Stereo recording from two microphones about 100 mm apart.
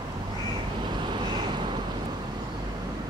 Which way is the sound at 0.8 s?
50° right (ahead or behind).